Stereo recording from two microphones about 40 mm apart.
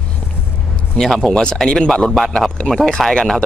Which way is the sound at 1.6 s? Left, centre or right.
Centre.